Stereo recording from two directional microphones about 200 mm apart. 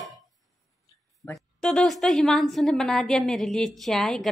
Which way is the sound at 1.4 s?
Centre (ahead or behind).